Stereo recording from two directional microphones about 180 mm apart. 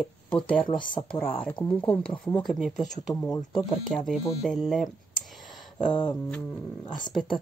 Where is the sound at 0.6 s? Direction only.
50° left (ahead or behind).